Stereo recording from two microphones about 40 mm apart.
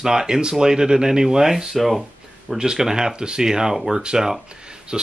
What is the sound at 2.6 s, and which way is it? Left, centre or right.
Speech, centre.